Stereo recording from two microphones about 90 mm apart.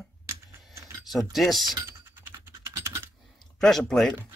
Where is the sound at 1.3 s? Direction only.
Centre (ahead or behind).